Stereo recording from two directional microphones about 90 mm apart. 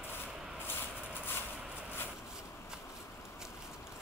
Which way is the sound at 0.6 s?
25° left (ahead or behind).